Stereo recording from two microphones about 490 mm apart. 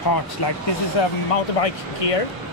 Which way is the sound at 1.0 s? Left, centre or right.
Left.